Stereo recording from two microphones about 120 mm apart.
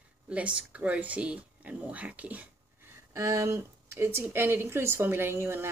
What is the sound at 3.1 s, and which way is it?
Speech, 25° right (ahead or behind).